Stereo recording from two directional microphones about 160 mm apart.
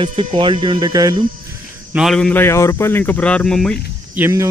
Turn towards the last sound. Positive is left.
turn(degrees=-20)  # may be behind; listen again after turning